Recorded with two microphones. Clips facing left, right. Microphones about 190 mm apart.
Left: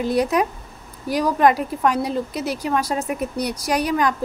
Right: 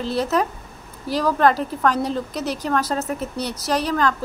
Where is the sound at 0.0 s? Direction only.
15° left (ahead or behind).